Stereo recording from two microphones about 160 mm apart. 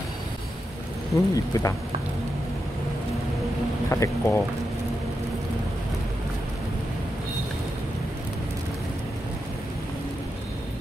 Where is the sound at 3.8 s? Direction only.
20° left (ahead or behind).